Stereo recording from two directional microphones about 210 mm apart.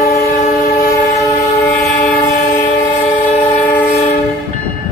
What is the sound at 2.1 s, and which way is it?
Train, 45° left (ahead or behind).